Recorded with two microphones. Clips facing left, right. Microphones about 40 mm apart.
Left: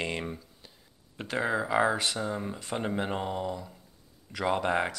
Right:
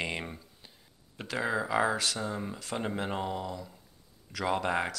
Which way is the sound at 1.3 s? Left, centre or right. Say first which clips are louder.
Left 2 dB; centre.